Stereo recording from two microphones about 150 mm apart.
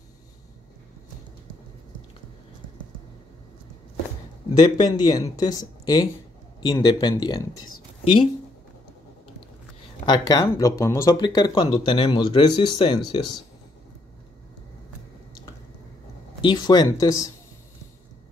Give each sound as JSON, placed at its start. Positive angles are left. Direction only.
{"t": 4.6, "sound": "speech", "side_deg": 25}
{"t": 10.0, "sound": "speech", "side_deg": 25}
{"t": 16.3, "sound": "speech", "side_deg": 30}